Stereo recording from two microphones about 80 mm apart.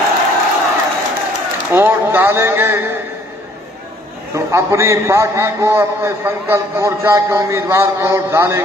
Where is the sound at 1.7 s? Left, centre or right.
Right.